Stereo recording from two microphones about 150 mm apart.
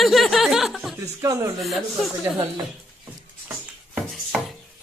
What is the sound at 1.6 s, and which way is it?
Speech, centre (ahead or behind).